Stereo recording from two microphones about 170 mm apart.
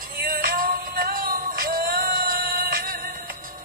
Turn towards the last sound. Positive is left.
turn(degrees=-55)  # may be behind; listen again after turning